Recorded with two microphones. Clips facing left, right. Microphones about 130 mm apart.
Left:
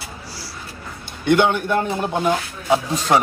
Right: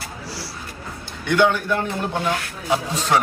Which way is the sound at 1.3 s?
20° left (ahead or behind).